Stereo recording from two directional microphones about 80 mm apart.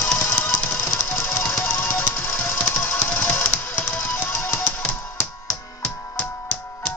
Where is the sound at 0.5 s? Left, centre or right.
Left.